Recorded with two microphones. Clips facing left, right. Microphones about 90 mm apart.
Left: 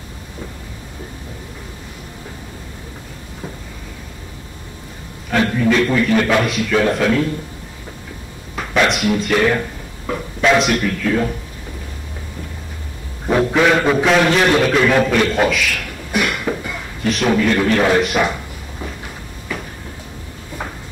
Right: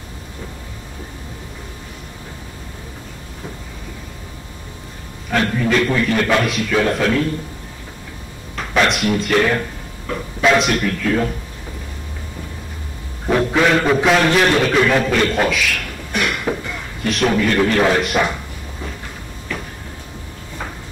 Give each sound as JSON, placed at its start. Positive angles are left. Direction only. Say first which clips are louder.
{"t": 5.3, "sound": "a man's voice", "louder": "left 2 dB", "side_deg": 0}
{"t": 8.5, "sound": "speech", "louder": "left 1 dB", "side_deg": 0}
{"t": 13.3, "sound": "a man's voice", "louder": "left 1 dB", "side_deg": 5}
{"t": 19.5, "sound": "a sound", "louder": "left 1 dB", "side_deg": 5}